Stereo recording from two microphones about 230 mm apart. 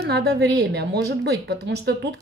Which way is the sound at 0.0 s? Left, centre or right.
Right.